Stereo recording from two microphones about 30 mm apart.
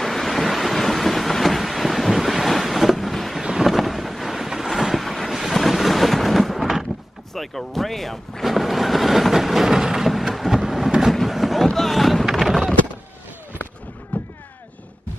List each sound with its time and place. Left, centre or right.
0.0 s ocean: centre
3.6 s wind noise: centre
4.9 s vehicle: centre
5.3 s thunder: centre
7.3 s speech: centre
8.5 s vehicle: centre
9.7 s a sound: centre
10.1 s a sound: centre
14.1 s a sound: left